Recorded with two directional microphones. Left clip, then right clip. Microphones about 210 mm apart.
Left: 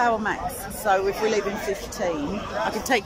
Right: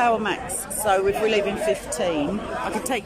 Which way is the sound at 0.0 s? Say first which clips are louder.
Right 1 dB; 10° right (ahead or behind).